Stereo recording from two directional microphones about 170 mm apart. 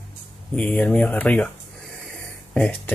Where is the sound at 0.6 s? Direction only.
10° left (ahead or behind).